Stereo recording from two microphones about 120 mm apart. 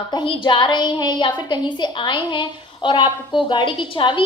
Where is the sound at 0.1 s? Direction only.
45° left (ahead or behind).